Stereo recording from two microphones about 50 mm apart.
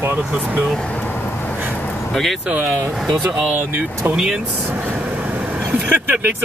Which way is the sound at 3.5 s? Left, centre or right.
Right.